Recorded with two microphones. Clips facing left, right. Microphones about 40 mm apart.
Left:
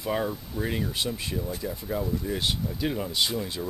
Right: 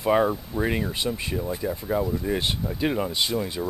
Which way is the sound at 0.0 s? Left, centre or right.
Right.